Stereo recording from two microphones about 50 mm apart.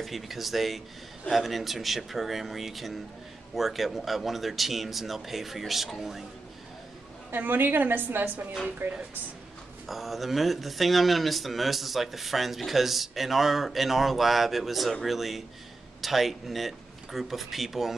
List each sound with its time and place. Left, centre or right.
0.0 s speech: centre
7.2 s a woman's voice: right
9.8 s speech: centre